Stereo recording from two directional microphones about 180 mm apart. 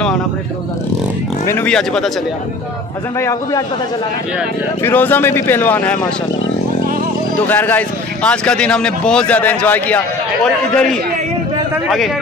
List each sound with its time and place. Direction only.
1.4 s speech: 10° left (ahead or behind)
3.2 s speech: 15° left (ahead or behind)
4.8 s speech: 10° left (ahead or behind)
7.3 s speech: 10° left (ahead or behind)